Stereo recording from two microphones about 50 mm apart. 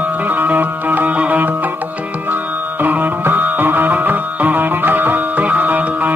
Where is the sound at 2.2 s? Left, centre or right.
Right.